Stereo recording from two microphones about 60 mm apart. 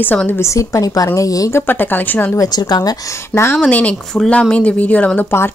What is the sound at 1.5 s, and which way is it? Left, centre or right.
Speech, left.